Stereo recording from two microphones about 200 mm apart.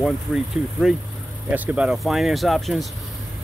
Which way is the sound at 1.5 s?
5° right (ahead or behind).